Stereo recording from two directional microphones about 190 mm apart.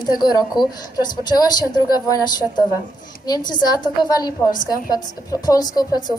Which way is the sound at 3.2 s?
20° left (ahead or behind).